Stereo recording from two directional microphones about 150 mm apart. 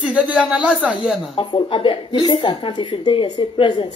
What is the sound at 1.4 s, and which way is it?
Speech, 35° left (ahead or behind).